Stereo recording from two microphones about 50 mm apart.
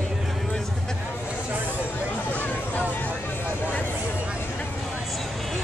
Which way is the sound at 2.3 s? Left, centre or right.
Left.